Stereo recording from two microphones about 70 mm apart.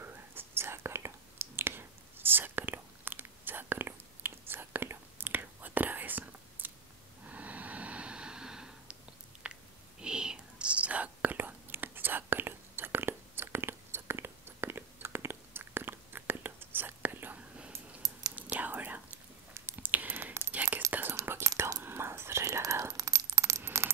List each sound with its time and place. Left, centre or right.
0.0 s whispering: right
7.2 s a sound: right
9.9 s whispering: centre; by 17.4 s right
17.4 s whispering: centre
18.6 s whispering: right
19.8 s a sound: right
20.5 s whispering: right
21.2 s whispering: right
21.8 s coin: right